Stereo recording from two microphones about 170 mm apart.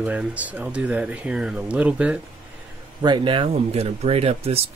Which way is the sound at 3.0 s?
30° right (ahead or behind).